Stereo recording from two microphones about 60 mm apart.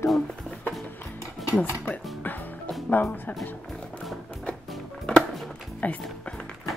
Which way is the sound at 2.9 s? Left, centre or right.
Left.